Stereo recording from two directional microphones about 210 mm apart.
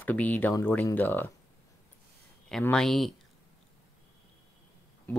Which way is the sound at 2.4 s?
5° left (ahead or behind).